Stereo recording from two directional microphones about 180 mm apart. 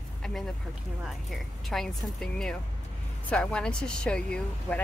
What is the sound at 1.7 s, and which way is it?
Speech, 5° left (ahead or behind).